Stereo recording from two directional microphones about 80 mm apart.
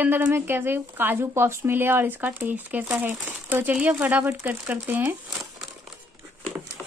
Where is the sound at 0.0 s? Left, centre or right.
Right.